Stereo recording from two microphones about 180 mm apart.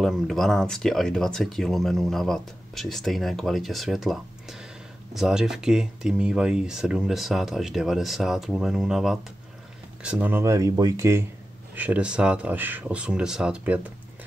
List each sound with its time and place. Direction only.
0.0 s speech: centre (ahead or behind)